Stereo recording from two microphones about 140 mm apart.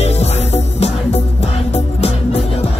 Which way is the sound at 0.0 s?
50° left (ahead or behind).